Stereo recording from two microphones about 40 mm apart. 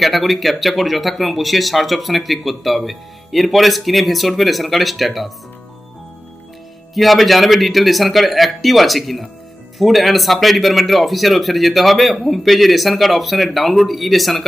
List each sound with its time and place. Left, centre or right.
0.0 s speech: centre
6.9 s speech: centre